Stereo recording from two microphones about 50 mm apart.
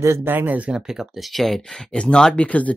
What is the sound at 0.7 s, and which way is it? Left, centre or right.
Speech, centre.